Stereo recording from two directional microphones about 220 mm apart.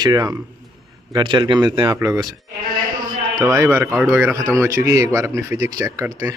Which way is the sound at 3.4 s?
15° right (ahead or behind).